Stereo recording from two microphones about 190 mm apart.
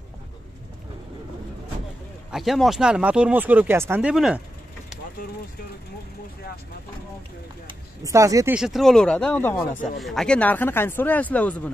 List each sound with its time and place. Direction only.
2.3 s speech: centre (ahead or behind)
7.6 s speech: 15° right (ahead or behind)
8.5 s speech: centre (ahead or behind)